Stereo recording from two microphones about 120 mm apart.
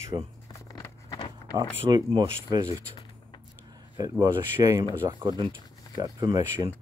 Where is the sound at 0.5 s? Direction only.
30° left (ahead or behind).